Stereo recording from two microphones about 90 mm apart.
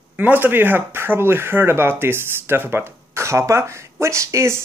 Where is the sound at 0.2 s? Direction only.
20° right (ahead or behind).